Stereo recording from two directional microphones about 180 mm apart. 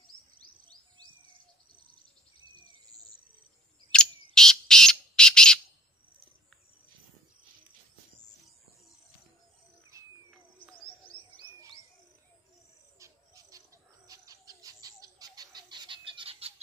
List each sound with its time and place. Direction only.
3.9 s bird: 5° left (ahead or behind)
9.9 s bird: 15° right (ahead or behind)
13.0 s bird: 20° right (ahead or behind)